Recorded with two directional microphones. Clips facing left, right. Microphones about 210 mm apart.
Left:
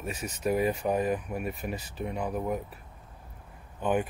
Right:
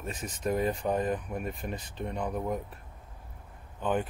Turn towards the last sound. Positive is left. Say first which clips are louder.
# left 2 dB
turn(degrees=10)  # may be behind; listen again after turning